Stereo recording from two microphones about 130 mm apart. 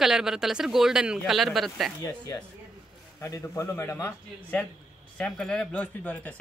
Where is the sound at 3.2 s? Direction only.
20° left (ahead or behind).